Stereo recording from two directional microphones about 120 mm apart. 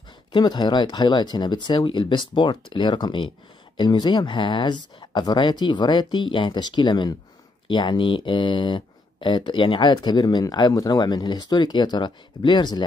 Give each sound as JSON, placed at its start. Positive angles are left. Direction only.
{"t": 0.3, "sound": "speech", "side_deg": 40}